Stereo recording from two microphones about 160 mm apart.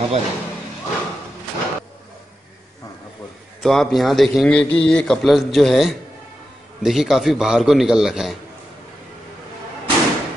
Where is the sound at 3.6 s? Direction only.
Centre (ahead or behind).